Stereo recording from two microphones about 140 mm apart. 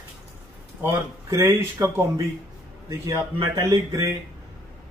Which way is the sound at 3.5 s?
25° right (ahead or behind).